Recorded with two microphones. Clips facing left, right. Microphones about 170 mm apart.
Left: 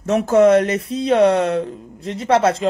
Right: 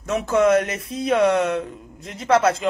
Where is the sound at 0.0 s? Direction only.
40° left (ahead or behind).